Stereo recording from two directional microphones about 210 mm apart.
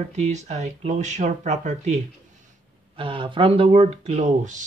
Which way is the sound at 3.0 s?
25° right (ahead or behind).